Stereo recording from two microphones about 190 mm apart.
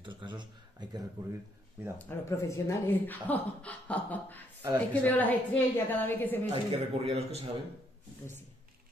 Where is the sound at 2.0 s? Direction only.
15° left (ahead or behind).